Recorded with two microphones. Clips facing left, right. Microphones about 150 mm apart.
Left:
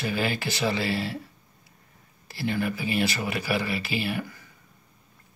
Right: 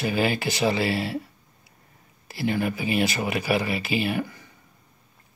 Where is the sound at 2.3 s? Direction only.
15° right (ahead or behind).